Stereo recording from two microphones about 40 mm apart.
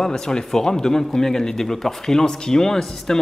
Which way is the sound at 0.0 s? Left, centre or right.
Centre.